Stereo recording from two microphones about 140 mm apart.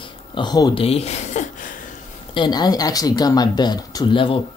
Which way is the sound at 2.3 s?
30° left (ahead or behind).